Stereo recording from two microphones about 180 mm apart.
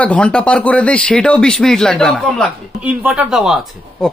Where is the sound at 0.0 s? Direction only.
5° left (ahead or behind).